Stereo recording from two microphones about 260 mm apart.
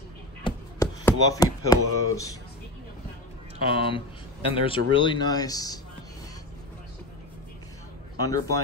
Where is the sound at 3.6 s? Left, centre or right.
Centre.